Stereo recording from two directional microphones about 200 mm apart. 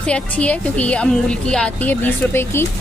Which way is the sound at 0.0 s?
5° left (ahead or behind).